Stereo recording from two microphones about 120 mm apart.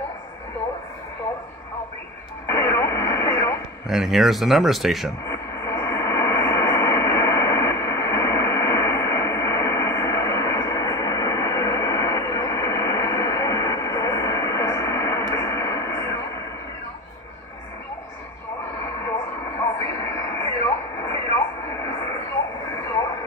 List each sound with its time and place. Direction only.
2.4 s radio: 25° left (ahead or behind)
3.8 s speech: 5° right (ahead or behind)
5.2 s radio: 25° left (ahead or behind)
20.3 s a sound: 25° left (ahead or behind)